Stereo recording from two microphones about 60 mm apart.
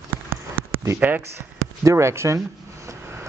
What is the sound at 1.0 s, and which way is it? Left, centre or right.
Speech, right.